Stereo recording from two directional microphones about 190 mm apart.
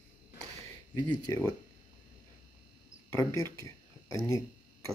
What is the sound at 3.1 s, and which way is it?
Speech, 15° left (ahead or behind).